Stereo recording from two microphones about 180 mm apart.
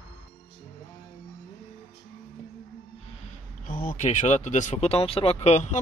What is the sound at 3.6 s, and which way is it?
Speech, 50° left (ahead or behind).